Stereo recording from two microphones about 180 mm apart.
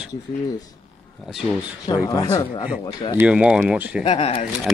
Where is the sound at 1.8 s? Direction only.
20° left (ahead or behind).